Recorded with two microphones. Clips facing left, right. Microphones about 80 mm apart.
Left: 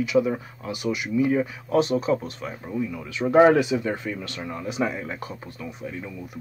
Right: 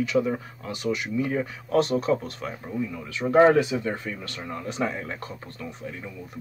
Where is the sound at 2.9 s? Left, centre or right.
Centre.